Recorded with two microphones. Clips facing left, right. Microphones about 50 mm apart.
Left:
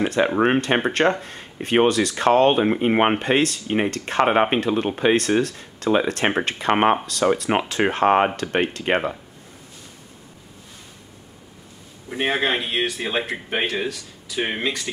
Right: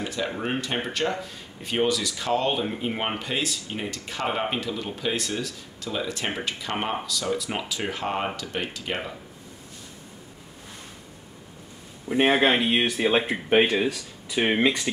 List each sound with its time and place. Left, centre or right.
0.0 s speech: left
12.2 s speech: centre
14.4 s speech: centre